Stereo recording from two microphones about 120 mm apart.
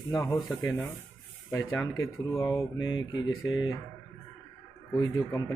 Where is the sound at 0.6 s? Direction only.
10° left (ahead or behind).